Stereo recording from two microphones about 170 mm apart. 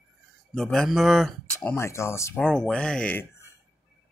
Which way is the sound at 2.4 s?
5° left (ahead or behind).